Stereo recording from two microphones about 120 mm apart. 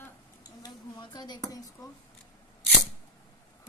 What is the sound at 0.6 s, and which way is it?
Speech, 35° left (ahead or behind).